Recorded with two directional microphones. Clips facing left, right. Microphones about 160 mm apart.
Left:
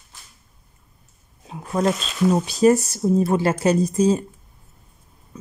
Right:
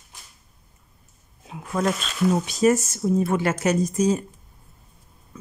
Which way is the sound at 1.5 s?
35° left (ahead or behind).